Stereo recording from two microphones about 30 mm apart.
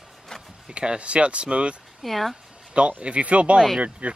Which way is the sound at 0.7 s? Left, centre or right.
Right.